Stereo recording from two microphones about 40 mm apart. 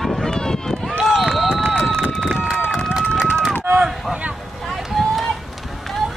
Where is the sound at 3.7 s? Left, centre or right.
Right.